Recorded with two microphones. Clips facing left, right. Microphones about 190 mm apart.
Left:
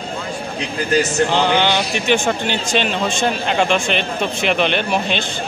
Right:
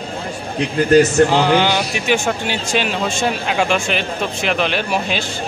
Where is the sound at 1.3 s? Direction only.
5° right (ahead or behind).